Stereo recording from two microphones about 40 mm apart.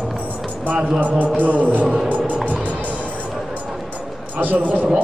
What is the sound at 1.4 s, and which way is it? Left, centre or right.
Music, right.